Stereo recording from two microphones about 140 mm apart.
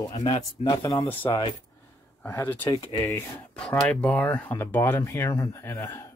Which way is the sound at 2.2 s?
15° left (ahead or behind).